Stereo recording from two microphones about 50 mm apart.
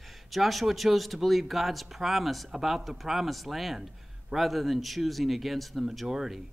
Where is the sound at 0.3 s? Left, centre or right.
Centre.